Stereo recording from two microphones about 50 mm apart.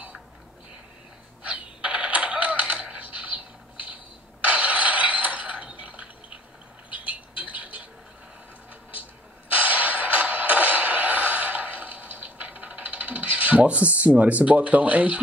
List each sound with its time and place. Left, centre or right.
1.4 s typewriter: right
4.4 s a sound: right
9.5 s music: right